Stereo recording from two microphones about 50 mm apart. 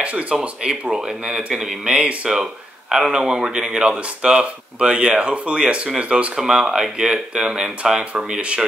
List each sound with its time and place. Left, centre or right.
0.0 s speech: right
6.4 s speech: centre